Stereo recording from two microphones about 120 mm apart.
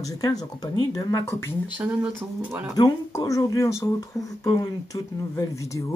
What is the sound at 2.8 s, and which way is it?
Speech, 30° left (ahead or behind).